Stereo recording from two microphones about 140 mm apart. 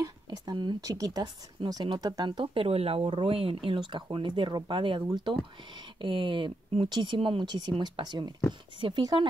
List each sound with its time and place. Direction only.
0.5 s speech: 30° right (ahead or behind)